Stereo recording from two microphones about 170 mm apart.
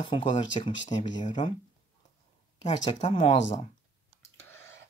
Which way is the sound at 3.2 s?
45° left (ahead or behind).